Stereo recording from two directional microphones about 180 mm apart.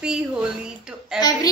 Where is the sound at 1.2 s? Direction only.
20° left (ahead or behind).